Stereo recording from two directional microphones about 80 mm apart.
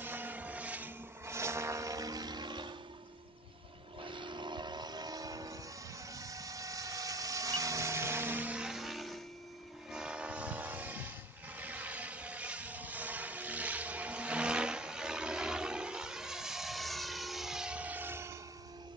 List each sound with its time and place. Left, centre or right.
0.0 s vehicle: right
1.2 s vehicle: right
4.0 s vehicle: right
6.1 s a sound: right; by 8.6 s centre
8.6 s music: centre
9.8 s train: centre
11.5 s vehicle: centre